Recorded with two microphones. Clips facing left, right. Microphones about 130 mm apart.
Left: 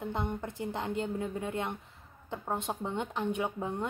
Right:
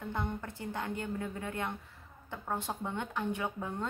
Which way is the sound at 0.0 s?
20° left (ahead or behind).